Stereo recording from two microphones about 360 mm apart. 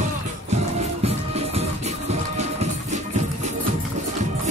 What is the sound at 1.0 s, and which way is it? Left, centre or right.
Music, centre.